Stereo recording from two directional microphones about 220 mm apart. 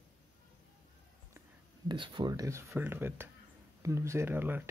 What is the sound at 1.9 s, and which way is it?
Speech, 20° right (ahead or behind).